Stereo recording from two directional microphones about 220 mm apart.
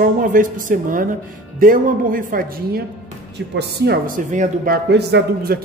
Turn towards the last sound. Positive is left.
turn(degrees=-45)  # may be behind; listen again after turning